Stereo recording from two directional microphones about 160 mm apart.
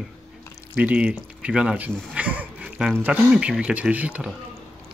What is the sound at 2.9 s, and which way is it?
Speech, 10° right (ahead or behind).